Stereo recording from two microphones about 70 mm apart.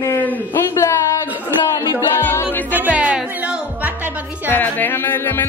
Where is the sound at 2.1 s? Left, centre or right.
Left.